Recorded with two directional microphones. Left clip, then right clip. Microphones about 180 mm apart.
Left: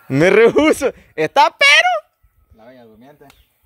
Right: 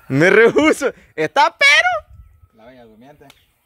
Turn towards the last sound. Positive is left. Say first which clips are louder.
# even
turn(degrees=5)  # may be behind; listen again after turning